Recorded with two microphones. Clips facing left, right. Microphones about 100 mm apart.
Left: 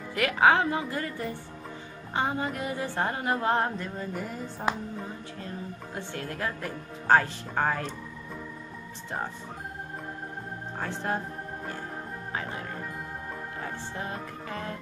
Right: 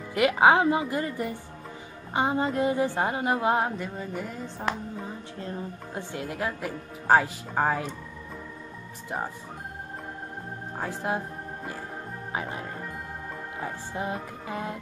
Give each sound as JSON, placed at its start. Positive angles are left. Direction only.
{"t": 0.1, "sound": "a woman's voice", "side_deg": -20}
{"t": 5.9, "sound": "a woman's voice", "side_deg": -15}
{"t": 10.8, "sound": "organ", "side_deg": -10}
{"t": 12.3, "sound": "music", "side_deg": -15}
{"t": 13.6, "sound": "a woman's voice", "side_deg": -15}